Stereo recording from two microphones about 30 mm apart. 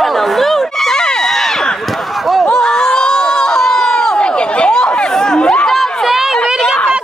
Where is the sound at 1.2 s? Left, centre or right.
Centre.